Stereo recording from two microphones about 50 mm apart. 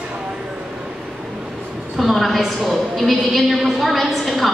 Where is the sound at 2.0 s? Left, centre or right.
Centre.